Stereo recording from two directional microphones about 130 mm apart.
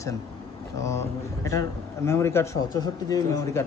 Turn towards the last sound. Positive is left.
turn(degrees=30)  # may be behind; listen again after turning